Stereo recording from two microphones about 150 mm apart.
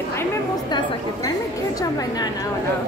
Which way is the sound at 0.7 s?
25° left (ahead or behind).